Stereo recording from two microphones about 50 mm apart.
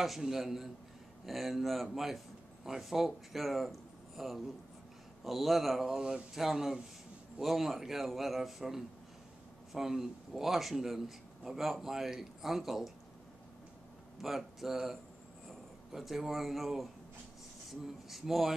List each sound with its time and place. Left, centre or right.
0.0 s a man's voice: centre
5.9 s a man's voice: centre
14.2 s a man's voice: centre